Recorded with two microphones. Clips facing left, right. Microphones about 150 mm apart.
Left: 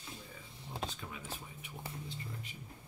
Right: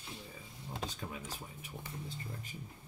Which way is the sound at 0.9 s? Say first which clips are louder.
Right 2 dB; 40° right (ahead or behind).